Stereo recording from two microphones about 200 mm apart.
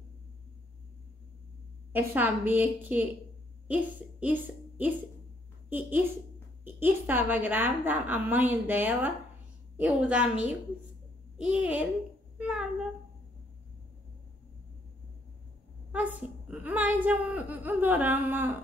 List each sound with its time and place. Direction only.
1.9 s a woman's voice: 10° right (ahead or behind)
12.4 s a sound: 5° right (ahead or behind)
15.9 s speech: 5° right (ahead or behind)